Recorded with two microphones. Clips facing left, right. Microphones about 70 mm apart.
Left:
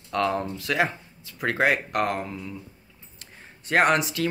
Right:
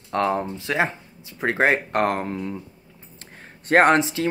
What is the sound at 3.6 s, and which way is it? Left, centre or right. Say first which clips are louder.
Speech: right 5 dB; right.